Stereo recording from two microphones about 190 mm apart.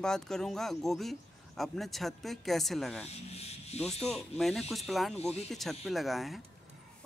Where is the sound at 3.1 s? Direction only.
35° left (ahead or behind).